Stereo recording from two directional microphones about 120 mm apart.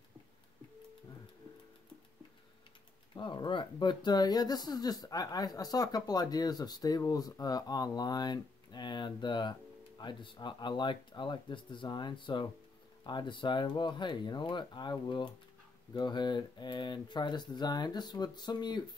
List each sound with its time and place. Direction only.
3.2 s speech: 45° left (ahead or behind)